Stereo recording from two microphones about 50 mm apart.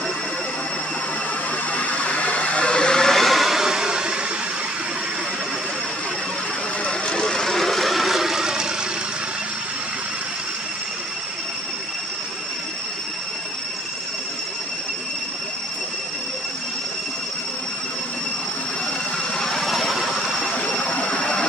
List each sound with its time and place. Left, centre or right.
1.7 s vehicle: left; by 4.1 s centre
6.8 s a sound: centre
19.3 s vehicle: centre
20.5 s vehicle: left